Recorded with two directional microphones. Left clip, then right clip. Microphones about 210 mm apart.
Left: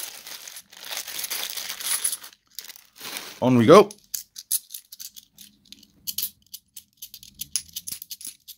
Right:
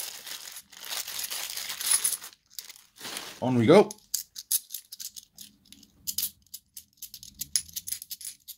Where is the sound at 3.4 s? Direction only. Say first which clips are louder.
Left 6 dB; 35° left (ahead or behind).